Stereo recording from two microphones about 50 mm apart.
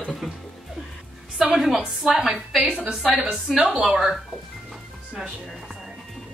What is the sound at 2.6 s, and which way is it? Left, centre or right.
Speech, right.